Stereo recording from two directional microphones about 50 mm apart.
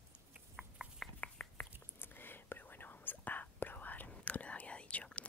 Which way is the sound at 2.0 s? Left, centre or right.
Left.